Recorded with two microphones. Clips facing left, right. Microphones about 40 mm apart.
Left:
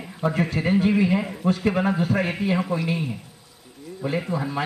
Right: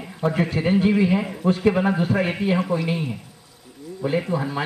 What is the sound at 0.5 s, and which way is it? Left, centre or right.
Speech, right.